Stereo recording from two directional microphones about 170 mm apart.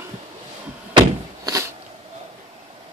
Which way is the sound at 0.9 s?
20° right (ahead or behind).